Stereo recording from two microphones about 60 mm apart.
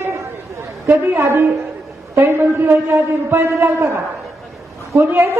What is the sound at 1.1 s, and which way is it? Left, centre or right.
A man's voice, right.